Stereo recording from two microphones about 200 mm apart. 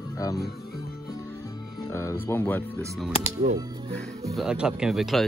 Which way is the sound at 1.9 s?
15° left (ahead or behind).